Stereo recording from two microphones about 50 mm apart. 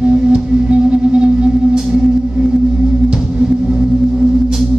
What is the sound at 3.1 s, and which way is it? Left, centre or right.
Music, centre.